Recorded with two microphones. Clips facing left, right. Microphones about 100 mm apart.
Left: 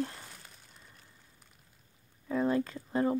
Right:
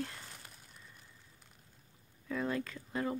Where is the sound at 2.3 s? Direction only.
30° left (ahead or behind).